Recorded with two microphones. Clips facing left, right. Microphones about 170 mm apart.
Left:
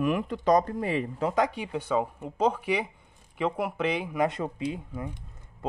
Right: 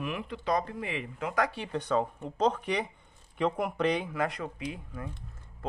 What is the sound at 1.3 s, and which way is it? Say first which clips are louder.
Speech: even; 15° left (ahead or behind).